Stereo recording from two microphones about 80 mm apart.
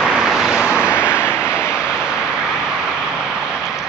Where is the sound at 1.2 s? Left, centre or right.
Left.